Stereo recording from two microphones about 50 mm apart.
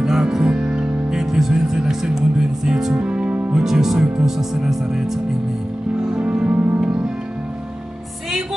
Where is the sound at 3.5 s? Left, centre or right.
Centre.